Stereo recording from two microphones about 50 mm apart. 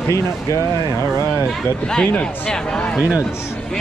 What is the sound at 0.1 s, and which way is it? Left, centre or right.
Speech, left.